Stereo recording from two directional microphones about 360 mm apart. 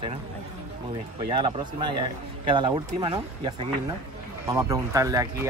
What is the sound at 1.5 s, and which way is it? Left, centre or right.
Speech, centre.